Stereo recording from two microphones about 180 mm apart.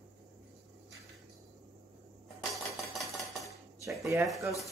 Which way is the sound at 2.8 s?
Centre (ahead or behind).